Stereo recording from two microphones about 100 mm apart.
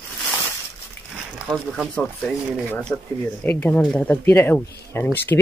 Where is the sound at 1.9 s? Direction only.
10° left (ahead or behind).